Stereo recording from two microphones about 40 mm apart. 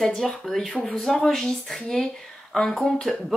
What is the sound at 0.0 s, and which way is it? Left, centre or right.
Speech, centre.